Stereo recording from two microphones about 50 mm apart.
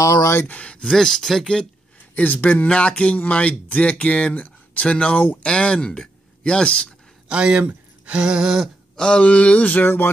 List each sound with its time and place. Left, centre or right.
0.5 s speech: left
0.8 s speech: centre
2.1 s speech: left
7.2 s speech: centre
8.9 s speech: centre